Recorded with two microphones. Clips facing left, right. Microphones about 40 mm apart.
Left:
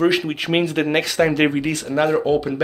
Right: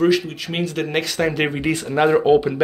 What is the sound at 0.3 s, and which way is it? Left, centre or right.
Speech, left.